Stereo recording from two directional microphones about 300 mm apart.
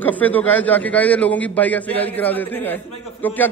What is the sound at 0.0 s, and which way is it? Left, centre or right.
A man's voice, centre.